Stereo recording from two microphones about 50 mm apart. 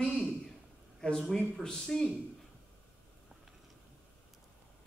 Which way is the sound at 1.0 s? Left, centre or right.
Centre.